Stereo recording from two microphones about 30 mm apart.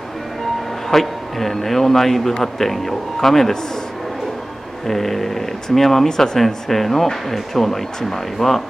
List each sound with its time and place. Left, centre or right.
0.8 s a man's voice: centre
4.8 s a man's voice: centre
6.0 s speech: centre
6.4 s a man's voice: centre